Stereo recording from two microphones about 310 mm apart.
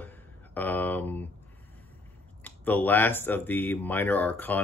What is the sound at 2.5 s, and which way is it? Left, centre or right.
Speech, centre.